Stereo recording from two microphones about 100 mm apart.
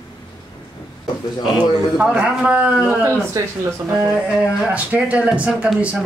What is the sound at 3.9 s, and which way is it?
Speech, 10° right (ahead or behind).